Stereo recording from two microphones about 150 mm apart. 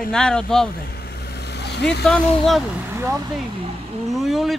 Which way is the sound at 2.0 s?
5° left (ahead or behind).